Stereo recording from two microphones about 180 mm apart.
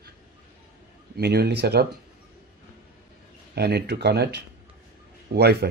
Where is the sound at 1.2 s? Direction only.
65° right (ahead or behind).